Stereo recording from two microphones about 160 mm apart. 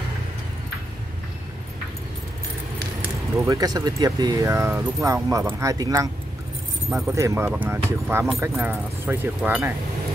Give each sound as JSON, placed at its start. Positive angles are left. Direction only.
{"t": 3.3, "sound": "speech", "side_deg": -20}
{"t": 7.1, "sound": "speech", "side_deg": -15}